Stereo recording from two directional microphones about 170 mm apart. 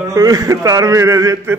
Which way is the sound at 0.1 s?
20° right (ahead or behind).